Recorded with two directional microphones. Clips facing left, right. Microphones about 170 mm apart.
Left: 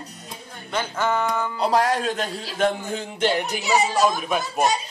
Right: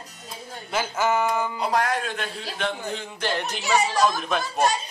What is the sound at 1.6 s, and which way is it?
A man's voice, 35° left (ahead or behind).